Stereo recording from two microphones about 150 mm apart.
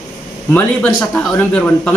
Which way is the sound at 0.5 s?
10° left (ahead or behind).